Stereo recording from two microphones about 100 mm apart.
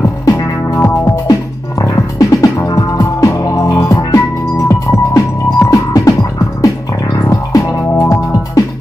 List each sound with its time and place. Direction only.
0.2 s music: 35° left (ahead or behind)
7.2 s music: 30° left (ahead or behind)